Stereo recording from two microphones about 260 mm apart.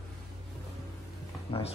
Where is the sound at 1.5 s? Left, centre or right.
Left.